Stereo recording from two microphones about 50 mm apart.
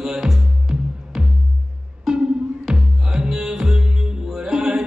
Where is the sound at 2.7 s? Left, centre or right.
Centre.